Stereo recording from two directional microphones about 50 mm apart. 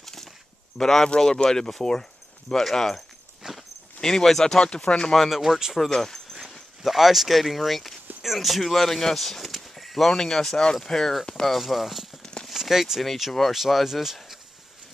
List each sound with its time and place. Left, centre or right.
0.0 s a sound: centre
0.7 s speech: centre
3.4 s walk: centre
4.0 s speech: centre
4.6 s speech: centre
5.1 s speech: centre
5.4 s speech: centre
5.9 s speech: centre
6.8 s speech: centre
11.5 s speech: centre
12.2 s a sound: centre
12.4 s a sound: centre
13.0 s speech: centre